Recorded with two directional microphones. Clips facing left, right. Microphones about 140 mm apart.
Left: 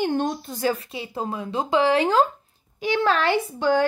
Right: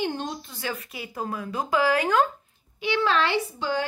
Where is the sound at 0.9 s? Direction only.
25° left (ahead or behind).